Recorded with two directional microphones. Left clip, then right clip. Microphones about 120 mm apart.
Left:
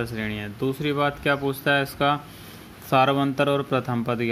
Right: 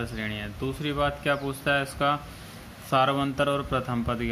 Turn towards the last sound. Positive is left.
turn(degrees=35)  # may be behind; listen again after turning